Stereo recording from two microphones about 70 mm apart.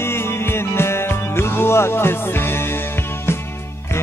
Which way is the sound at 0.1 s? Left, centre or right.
Left.